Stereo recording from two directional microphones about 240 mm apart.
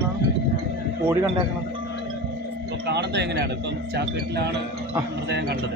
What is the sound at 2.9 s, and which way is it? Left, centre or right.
Speech, right.